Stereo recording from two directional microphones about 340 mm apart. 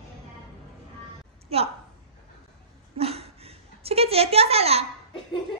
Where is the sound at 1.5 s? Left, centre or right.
Centre.